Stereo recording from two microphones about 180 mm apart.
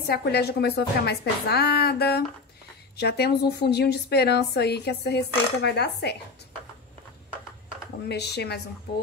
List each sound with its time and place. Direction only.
0.1 s a woman's voice: 65° left (ahead or behind)
8.1 s a woman's voice: 65° left (ahead or behind)